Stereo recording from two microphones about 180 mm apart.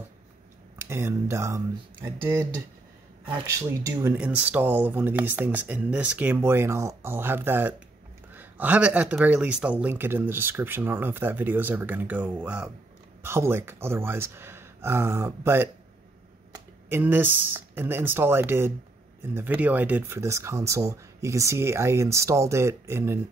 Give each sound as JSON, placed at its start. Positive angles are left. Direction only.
{"t": 0.7, "sound": "speech", "side_deg": -15}